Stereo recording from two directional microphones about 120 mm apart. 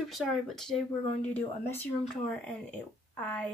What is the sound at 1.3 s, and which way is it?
Speech, 15° left (ahead or behind).